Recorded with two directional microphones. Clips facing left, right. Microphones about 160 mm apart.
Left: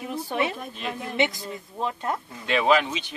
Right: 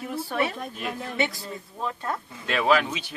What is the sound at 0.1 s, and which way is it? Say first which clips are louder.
Speech: even; 20° left (ahead or behind).